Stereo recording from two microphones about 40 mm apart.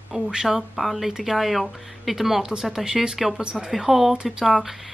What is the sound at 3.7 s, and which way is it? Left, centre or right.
Speech, centre.